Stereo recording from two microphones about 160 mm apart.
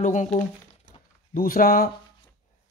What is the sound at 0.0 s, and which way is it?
Speech, 50° left (ahead or behind).